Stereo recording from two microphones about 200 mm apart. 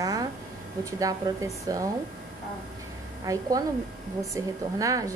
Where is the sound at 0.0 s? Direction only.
20° right (ahead or behind).